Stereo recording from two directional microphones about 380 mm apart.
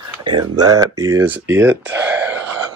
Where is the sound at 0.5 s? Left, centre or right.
Centre.